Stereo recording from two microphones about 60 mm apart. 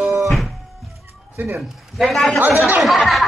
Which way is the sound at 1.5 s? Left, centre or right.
Centre.